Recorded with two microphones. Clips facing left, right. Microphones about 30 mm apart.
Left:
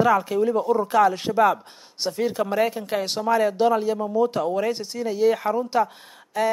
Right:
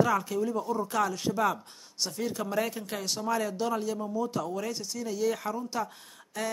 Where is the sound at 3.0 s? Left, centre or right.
Left.